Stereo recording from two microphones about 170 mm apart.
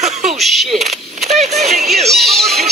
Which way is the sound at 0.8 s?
40° right (ahead or behind).